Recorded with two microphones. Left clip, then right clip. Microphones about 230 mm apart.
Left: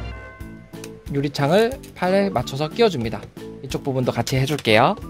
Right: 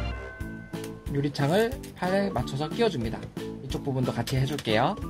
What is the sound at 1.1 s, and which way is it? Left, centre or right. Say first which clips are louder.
Speech: left 7 dB; left.